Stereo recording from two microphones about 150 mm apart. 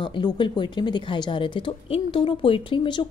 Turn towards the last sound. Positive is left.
turn(degrees=30)  # may be behind; listen again after turning